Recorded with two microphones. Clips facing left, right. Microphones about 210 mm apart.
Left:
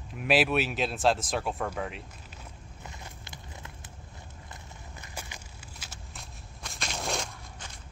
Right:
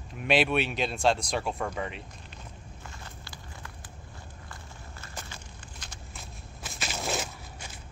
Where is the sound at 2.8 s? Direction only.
20° left (ahead or behind).